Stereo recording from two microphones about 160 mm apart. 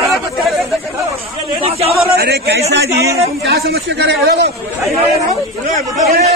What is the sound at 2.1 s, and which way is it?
A man's voice, 85° right.